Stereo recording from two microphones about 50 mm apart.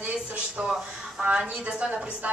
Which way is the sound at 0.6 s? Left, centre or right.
Centre.